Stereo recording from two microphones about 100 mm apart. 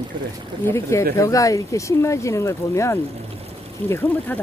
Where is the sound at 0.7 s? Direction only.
30° left (ahead or behind).